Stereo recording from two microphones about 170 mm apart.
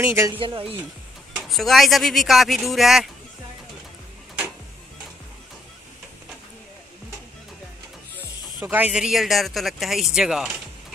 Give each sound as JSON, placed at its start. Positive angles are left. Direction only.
{"t": 0.0, "sound": "speech", "side_deg": -15}
{"t": 0.4, "sound": "speech", "side_deg": -30}
{"t": 1.3, "sound": "a man's voice", "side_deg": 0}
{"t": 8.6, "sound": "a man's voice", "side_deg": -10}